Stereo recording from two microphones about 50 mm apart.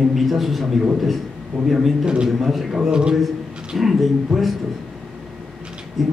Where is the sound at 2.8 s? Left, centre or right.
Centre.